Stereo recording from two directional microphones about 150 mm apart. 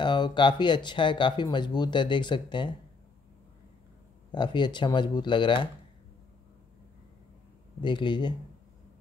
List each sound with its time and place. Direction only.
0.0 s speech: 30° left (ahead or behind)
4.3 s speech: 30° left (ahead or behind)
7.8 s speech: 30° left (ahead or behind)